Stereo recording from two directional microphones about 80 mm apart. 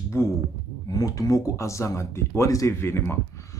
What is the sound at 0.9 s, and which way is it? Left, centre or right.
Speech, left.